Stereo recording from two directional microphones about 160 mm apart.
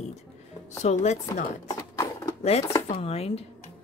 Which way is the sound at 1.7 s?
20° left (ahead or behind).